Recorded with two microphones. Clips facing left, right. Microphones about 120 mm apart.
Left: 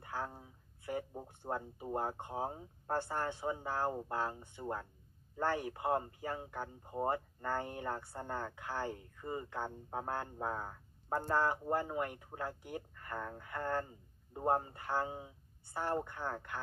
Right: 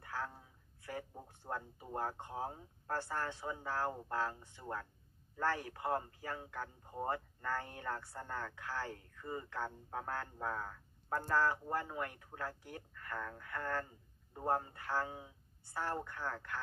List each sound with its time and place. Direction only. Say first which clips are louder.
0.0 s speech: left 2 dB; 20° left (ahead or behind)